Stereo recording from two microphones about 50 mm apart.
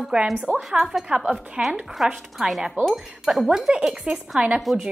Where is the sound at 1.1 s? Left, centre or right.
Right.